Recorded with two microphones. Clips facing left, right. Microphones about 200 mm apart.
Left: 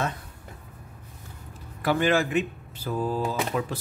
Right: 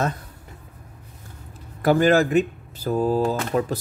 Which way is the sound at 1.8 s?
40° right (ahead or behind).